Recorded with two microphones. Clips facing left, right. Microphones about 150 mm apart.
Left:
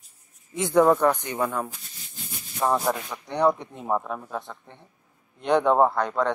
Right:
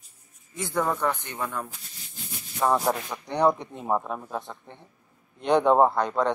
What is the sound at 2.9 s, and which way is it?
Speech, 10° right (ahead or behind).